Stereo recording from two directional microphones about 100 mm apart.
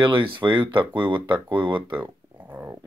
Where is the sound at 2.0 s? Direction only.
20° right (ahead or behind).